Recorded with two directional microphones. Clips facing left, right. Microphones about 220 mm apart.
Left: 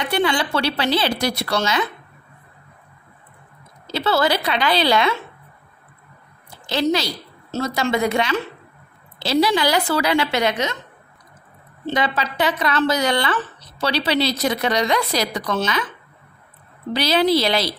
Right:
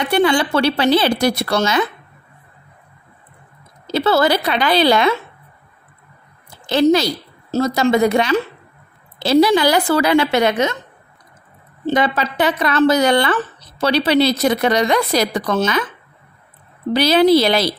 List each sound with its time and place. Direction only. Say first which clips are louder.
0.1 s speech: right 5 dB; 50° right (ahead or behind)
3.8 s speech: right 4 dB; 50° right (ahead or behind)
6.7 s a woman's voice: right 7 dB; 50° right (ahead or behind)
11.8 s speech: right 5 dB; 50° right (ahead or behind)
16.9 s speech: right 6 dB; 50° right (ahead or behind)